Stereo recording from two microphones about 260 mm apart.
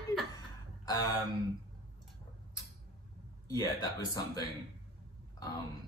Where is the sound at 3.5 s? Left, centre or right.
Centre.